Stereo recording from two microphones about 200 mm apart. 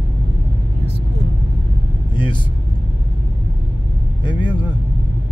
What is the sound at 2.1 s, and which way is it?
Speech, 25° left (ahead or behind).